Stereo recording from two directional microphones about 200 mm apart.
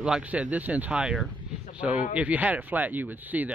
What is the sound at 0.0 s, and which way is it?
Speech, 5° right (ahead or behind).